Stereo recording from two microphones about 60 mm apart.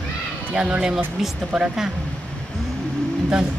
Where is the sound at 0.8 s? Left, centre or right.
Centre.